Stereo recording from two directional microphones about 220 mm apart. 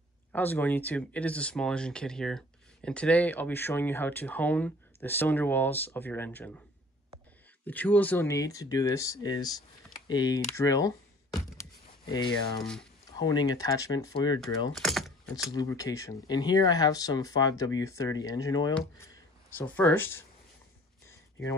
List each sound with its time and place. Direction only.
0.3 s speech: 10° left (ahead or behind)
7.6 s speech: 5° left (ahead or behind)
10.0 s computer keyboard: 15° left (ahead or behind)
13.2 s speech: 15° left (ahead or behind)
14.7 s typing: centre (ahead or behind)
15.5 s speech: 15° left (ahead or behind)